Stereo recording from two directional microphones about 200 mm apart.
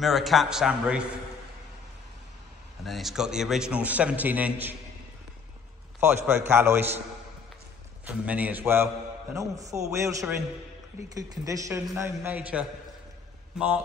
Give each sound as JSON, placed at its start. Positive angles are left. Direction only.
{"t": 0.0, "sound": "a man's voice", "side_deg": 0}
{"t": 2.8, "sound": "a man's voice", "side_deg": 0}
{"t": 5.9, "sound": "a man's voice", "side_deg": -10}
{"t": 8.1, "sound": "a man's voice", "side_deg": -5}
{"t": 11.1, "sound": "a man's voice", "side_deg": -15}